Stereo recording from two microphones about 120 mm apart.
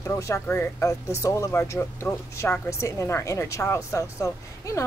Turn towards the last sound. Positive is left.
turn(degrees=25)  # may be behind; listen again after turning